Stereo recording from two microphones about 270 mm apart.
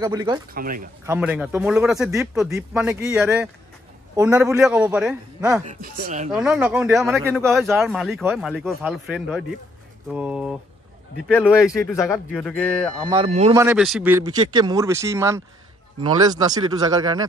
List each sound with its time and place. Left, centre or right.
0.0 s speech: centre
0.6 s speech: right
1.0 s speech: centre
5.7 s speech: right
6.3 s speech: centre
11.6 s speech: centre
13.1 s speech: right
13.6 s speech: centre